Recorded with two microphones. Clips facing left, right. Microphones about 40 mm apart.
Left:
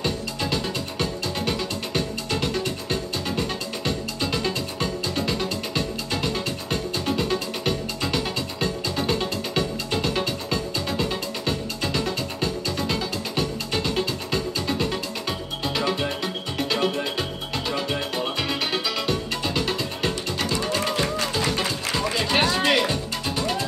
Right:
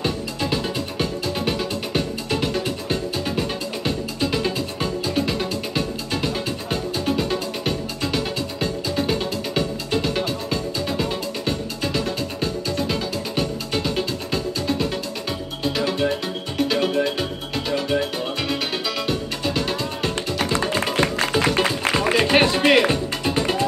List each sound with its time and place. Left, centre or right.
0.0 s music: centre
19.0 s music: centre
20.6 s music: right
21.0 s music: right